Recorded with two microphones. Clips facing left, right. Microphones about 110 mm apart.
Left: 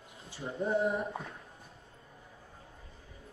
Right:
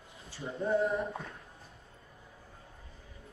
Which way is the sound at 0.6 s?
25° left (ahead or behind).